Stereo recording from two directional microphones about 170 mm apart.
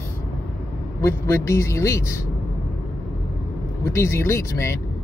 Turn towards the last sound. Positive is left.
turn(degrees=15)  # may be behind; listen again after turning